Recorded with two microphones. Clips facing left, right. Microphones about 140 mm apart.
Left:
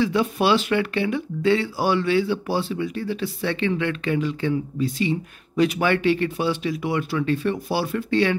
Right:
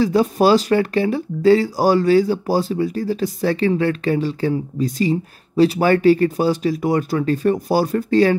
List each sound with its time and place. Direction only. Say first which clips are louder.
0.0 s speech: right 5 dB; 40° right (ahead or behind)